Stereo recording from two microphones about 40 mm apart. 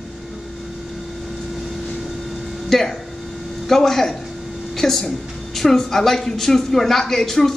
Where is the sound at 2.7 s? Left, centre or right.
Centre.